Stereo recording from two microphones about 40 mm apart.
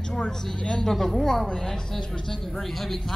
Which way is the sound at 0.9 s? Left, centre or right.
Centre.